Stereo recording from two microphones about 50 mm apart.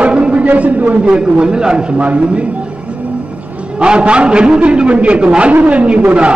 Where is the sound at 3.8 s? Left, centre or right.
Right.